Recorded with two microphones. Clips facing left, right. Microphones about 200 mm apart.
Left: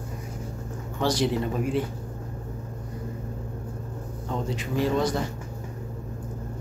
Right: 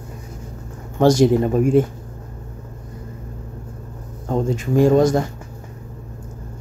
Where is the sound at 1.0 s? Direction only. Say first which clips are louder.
Right 11 dB; 45° right (ahead or behind).